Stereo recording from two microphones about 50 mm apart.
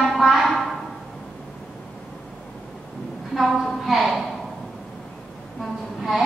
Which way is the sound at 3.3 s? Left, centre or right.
Centre.